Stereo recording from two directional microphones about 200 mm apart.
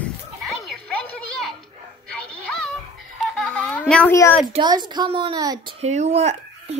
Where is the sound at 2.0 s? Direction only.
5° left (ahead or behind).